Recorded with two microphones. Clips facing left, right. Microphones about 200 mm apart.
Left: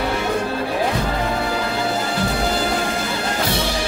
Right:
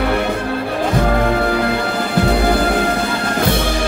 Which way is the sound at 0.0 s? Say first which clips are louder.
Right 3 dB; 60° right (ahead or behind).